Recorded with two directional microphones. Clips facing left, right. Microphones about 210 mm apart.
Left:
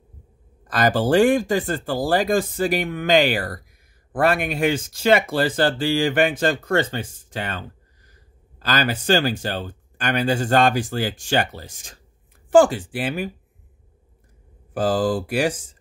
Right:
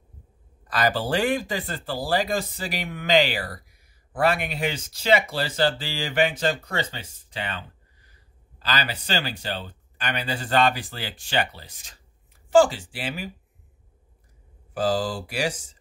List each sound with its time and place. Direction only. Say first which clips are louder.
0.7 s speech: left 5 dB; 50° left (ahead or behind)
14.7 s speech: left 4 dB; 55° left (ahead or behind)